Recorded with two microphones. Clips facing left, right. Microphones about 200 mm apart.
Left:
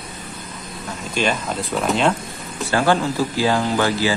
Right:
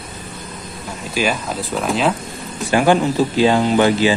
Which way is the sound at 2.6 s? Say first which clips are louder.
Right 4 dB; 15° right (ahead or behind).